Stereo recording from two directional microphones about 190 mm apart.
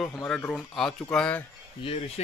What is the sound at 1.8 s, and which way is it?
Speech, 30° left (ahead or behind).